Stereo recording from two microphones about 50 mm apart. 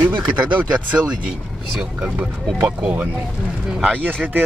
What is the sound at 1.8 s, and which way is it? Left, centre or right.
Speech, right.